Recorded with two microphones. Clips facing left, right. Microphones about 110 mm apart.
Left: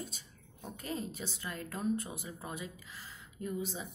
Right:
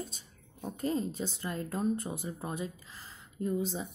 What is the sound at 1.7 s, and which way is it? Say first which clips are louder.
Speech: right 2 dB; 35° right (ahead or behind).